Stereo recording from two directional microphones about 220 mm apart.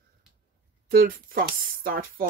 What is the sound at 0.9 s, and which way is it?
Speech, 40° right (ahead or behind).